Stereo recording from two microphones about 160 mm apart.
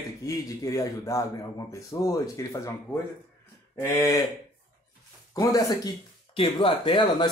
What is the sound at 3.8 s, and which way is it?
Speech, 15° left (ahead or behind).